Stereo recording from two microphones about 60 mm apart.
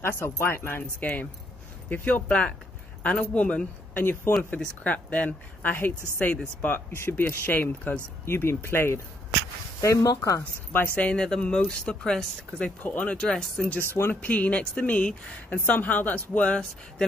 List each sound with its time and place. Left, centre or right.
0.0 s speech: left
0.9 s speech: left
3.9 s speech: left
4.8 s speech: left
8.3 s speech: left
9.8 s speech: left
11.1 s speech: centre
12.6 s speech: left
13.2 s speech: centre
13.7 s speech: left
14.2 s speech: left